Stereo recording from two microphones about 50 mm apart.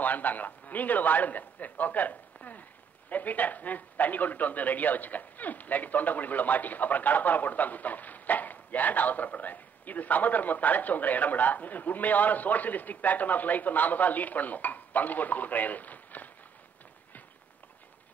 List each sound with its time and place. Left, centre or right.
0.0 s a man's voice: left